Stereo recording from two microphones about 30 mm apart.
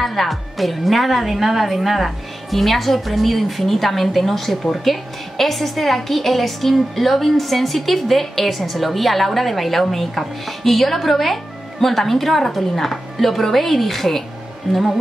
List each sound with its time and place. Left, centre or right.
0.0 s a woman's voice: centre